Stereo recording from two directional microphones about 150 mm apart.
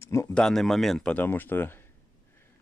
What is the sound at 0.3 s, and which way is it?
Speech, 5° left (ahead or behind).